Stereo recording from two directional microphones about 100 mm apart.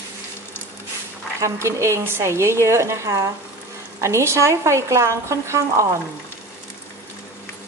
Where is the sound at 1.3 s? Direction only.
30° right (ahead or behind).